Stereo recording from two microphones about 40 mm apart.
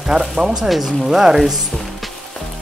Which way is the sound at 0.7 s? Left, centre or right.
Centre.